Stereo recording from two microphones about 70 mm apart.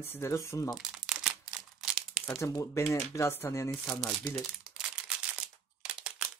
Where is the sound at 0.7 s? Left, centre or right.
Centre.